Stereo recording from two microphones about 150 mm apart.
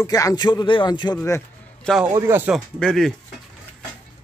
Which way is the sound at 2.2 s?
15° right (ahead or behind).